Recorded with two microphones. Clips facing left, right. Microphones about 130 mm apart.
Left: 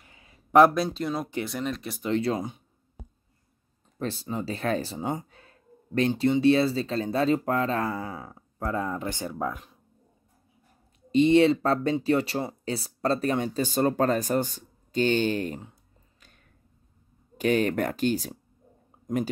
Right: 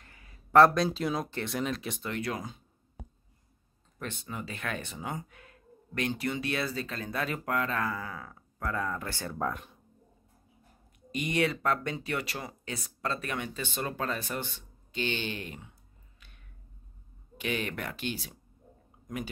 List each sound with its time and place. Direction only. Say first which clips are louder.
0.0 s a sound: left 1 dB; 20° left (ahead or behind)
0.7 s speech: left 1 dB; centre (ahead or behind)
2.0 s speech: left 9 dB; 25° left (ahead or behind)
4.0 s speech: left 8 dB; 30° left (ahead or behind)
9.4 s speech: right 2 dB; 5° left (ahead or behind)
11.1 s speech: left 11 dB; 30° left (ahead or behind)
16.2 s a sound: left 1 dB; 40° left (ahead or behind)
17.4 s speech: left 10 dB; 40° left (ahead or behind)